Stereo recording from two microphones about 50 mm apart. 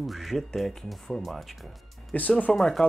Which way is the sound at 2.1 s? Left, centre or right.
Left.